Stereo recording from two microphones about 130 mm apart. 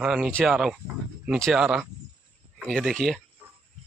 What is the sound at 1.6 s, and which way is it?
Speech, 5° right (ahead or behind).